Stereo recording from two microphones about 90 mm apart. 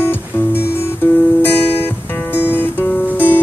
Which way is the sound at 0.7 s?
25° left (ahead or behind).